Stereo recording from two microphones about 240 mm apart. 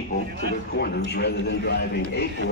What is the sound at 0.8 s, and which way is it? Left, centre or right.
A man's voice, left.